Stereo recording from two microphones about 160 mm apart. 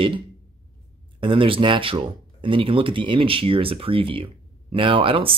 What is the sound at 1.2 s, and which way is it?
Speech, 35° right (ahead or behind).